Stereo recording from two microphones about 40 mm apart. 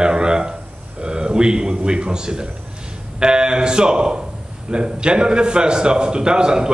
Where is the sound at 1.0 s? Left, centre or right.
Right.